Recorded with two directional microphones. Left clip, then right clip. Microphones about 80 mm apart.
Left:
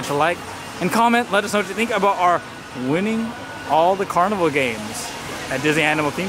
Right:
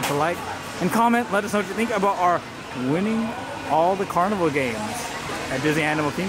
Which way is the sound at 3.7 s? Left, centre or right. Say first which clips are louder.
Left 4 dB; left.